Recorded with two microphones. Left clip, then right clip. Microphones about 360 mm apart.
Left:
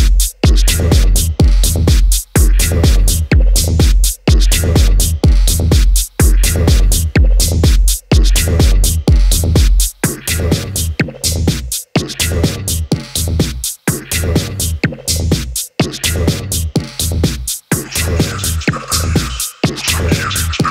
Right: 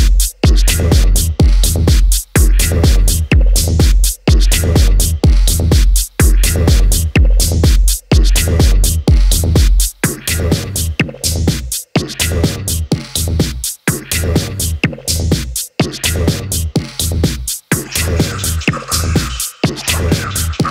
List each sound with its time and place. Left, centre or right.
0.0 s music: centre